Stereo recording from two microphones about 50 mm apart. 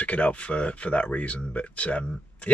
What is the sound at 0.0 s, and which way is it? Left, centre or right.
Speech, left.